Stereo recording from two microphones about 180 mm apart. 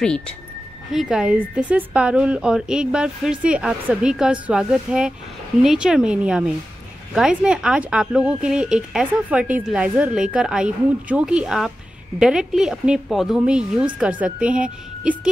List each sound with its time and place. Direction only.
0.9 s a woman's voice: centre (ahead or behind)